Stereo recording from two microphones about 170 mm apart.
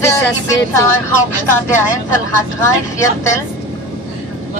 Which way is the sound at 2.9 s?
15° left (ahead or behind).